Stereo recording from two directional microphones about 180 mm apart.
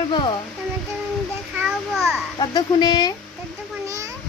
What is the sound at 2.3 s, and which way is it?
Speech, 25° left (ahead or behind).